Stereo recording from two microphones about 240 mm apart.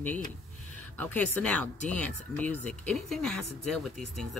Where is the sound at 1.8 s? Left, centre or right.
Right.